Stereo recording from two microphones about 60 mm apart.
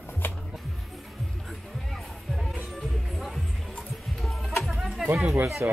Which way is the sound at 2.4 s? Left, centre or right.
Centre.